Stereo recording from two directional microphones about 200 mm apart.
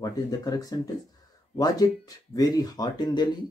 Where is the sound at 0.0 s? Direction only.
20° left (ahead or behind).